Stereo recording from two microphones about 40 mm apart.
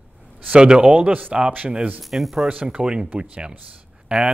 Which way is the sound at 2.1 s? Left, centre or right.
Centre.